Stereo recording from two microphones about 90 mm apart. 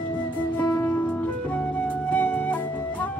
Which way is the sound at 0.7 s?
25° left (ahead or behind).